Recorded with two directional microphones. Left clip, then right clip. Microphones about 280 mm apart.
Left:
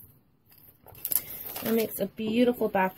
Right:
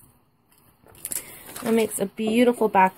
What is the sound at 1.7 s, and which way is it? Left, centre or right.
Speech, centre.